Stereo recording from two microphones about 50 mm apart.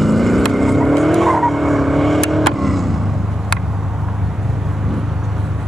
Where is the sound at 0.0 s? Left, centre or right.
Centre.